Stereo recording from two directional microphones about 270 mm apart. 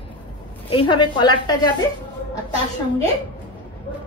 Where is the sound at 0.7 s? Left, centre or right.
Centre.